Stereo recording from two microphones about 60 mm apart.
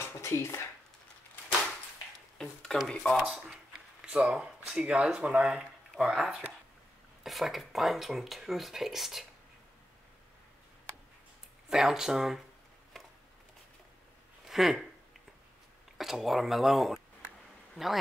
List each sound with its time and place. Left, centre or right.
0.0 s a sound: left
2.4 s speech: centre
3.2 s speech: centre
11.7 s speech: centre
12.9 s a sound: centre
14.4 s speech: centre
16.0 s speech: centre